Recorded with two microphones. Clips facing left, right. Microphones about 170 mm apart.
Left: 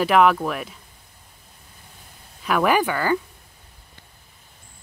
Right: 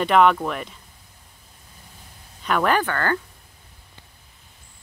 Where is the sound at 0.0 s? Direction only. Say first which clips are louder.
Even; 5° left (ahead or behind).